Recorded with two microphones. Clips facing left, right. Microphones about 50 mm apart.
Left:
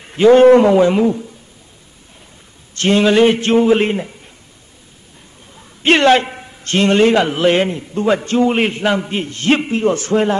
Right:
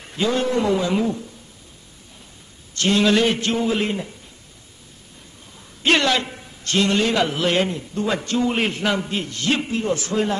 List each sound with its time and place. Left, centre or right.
0.1 s a man's voice: left
0.9 s a woman's voice: left
2.7 s a man's voice: left
5.8 s a man's voice: left